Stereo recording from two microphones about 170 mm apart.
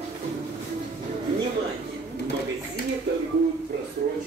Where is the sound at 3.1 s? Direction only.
80° right.